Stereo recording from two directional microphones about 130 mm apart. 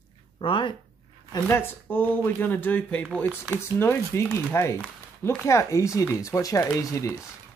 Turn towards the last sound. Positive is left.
turn(degrees=25)  # may be behind; listen again after turning